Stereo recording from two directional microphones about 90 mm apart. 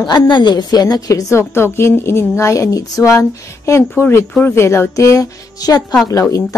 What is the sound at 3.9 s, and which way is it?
A woman's voice, 25° left (ahead or behind).